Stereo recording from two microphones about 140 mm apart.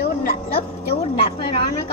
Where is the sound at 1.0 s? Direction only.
40° left (ahead or behind).